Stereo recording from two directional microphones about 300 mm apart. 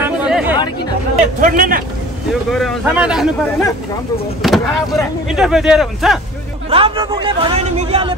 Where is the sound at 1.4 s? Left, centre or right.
Right.